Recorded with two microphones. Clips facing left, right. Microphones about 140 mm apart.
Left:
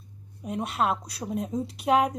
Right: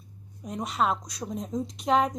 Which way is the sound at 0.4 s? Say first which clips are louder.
Left 1 dB; 5° left (ahead or behind).